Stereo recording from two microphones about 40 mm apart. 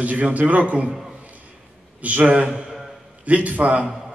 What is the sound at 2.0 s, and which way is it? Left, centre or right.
A man's voice, right.